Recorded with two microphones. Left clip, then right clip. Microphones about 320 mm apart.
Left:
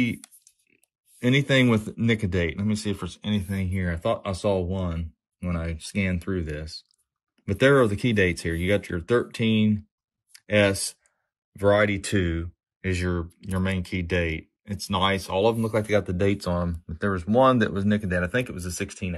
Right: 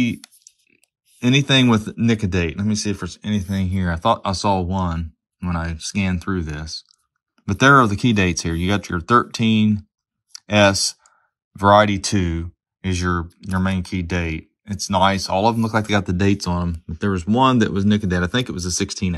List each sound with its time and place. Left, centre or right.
1.2 s speech: centre